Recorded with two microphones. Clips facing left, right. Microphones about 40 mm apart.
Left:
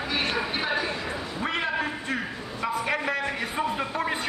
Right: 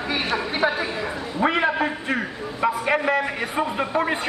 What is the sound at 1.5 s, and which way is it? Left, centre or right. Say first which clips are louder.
A man's voice: right 6 dB; centre.